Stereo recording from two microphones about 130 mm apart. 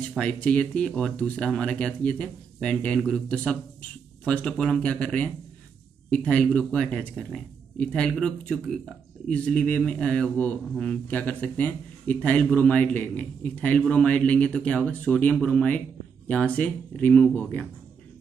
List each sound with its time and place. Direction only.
0.2 s speech: 10° left (ahead or behind)